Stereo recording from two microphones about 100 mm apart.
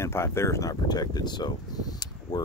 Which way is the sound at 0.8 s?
40° left (ahead or behind).